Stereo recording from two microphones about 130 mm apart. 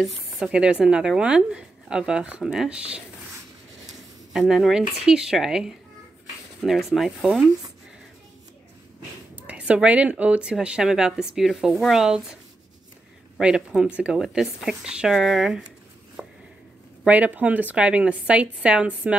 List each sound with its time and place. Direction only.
0.0 s speech: 5° right (ahead or behind)
4.3 s speech: 5° right (ahead or behind)
9.3 s speech: 10° right (ahead or behind)
13.4 s speech: 5° right (ahead or behind)
16.2 s a sound: 5° right (ahead or behind)
17.0 s speech: 10° right (ahead or behind)